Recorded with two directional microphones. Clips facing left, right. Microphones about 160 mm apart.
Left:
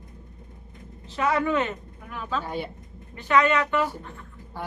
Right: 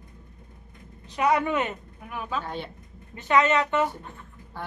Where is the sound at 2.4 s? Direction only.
10° left (ahead or behind).